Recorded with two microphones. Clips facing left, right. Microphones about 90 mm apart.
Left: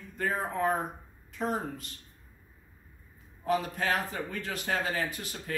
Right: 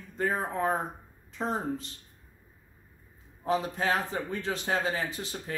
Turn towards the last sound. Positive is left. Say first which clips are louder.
# right 1 dB
turn(degrees=-25)  # may be behind; listen again after turning